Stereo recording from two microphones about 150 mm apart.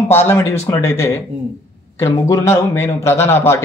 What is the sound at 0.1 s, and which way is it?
A man's voice, 15° left (ahead or behind).